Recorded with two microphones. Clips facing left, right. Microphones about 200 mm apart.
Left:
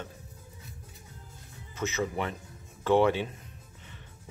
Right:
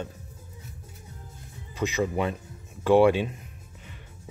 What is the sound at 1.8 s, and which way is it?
Speech, 15° right (ahead or behind).